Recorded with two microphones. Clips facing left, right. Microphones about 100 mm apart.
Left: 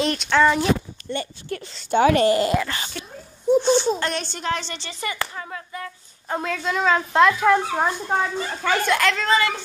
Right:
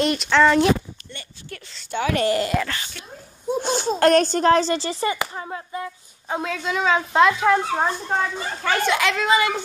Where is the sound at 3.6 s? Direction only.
45° right (ahead or behind).